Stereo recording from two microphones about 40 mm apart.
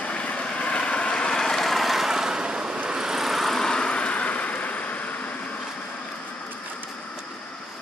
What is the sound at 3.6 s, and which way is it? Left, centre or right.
Vehicle, left.